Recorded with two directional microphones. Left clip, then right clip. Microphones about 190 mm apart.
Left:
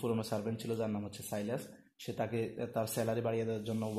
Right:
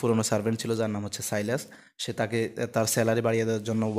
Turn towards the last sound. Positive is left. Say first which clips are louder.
# right 9 dB
turn(degrees=-35)  # may be behind; listen again after turning